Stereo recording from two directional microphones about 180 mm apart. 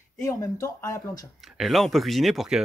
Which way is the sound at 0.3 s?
15° left (ahead or behind).